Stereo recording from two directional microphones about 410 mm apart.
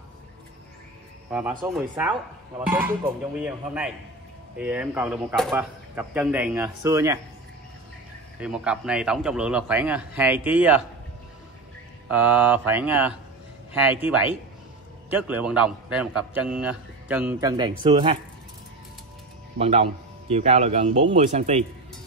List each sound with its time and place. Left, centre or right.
1.3 s a man's voice: centre
8.4 s a man's voice: centre
12.1 s a man's voice: centre
19.6 s a man's voice: centre